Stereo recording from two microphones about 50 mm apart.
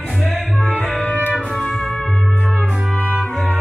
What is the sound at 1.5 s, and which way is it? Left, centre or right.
Music, centre.